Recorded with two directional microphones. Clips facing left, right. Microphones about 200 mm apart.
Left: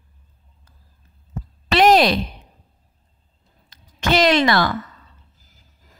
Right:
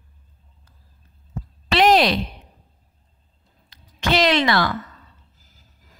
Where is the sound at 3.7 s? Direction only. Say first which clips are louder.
Left 2 dB; 45° left (ahead or behind).